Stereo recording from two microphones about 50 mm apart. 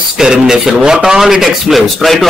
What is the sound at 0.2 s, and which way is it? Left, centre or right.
A man's voice, centre.